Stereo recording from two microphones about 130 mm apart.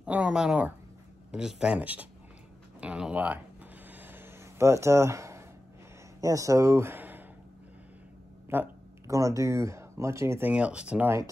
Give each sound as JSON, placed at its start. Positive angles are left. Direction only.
{"t": 0.0, "sound": "speech", "side_deg": -10}
{"t": 3.8, "sound": "a sound", "side_deg": -15}
{"t": 6.2, "sound": "speech", "side_deg": -25}
{"t": 8.5, "sound": "speech", "side_deg": -20}
{"t": 10.5, "sound": "speech", "side_deg": -10}